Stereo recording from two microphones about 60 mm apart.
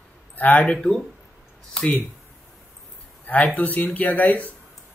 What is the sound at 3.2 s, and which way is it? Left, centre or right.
Speech, left.